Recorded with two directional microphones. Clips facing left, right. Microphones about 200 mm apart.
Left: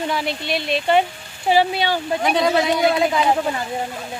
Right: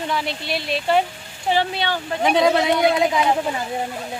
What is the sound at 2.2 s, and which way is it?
Speech, 20° right (ahead or behind).